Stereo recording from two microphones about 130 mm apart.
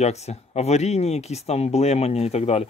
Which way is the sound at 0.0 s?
55° left (ahead or behind).